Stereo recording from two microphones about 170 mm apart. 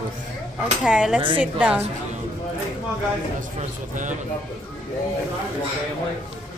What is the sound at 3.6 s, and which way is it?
Speech, 45° right (ahead or behind).